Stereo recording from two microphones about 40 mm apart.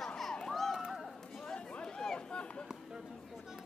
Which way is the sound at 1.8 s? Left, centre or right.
Left.